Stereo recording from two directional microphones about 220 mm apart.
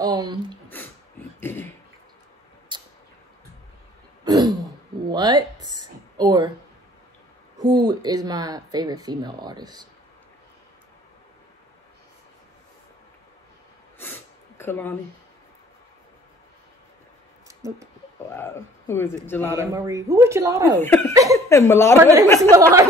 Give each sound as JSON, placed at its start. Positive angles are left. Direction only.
{"t": 0.0, "sound": "speech", "side_deg": -20}
{"t": 1.4, "sound": "a sound", "side_deg": 10}
{"t": 2.7, "sound": "a sound", "side_deg": -20}
{"t": 4.2, "sound": "throat clearing", "side_deg": -15}
{"t": 5.1, "sound": "a sound", "side_deg": -20}
{"t": 7.9, "sound": "speech", "side_deg": -20}
{"t": 13.9, "sound": "sniff", "side_deg": 10}
{"t": 17.6, "sound": "speech", "side_deg": -15}
{"t": 18.3, "sound": "speech", "side_deg": 10}
{"t": 19.5, "sound": "speech", "side_deg": -15}
{"t": 20.8, "sound": "speech", "side_deg": 10}
{"t": 21.1, "sound": "speech", "side_deg": -15}
{"t": 21.5, "sound": "speech", "side_deg": 15}
{"t": 22.0, "sound": "speech", "side_deg": -15}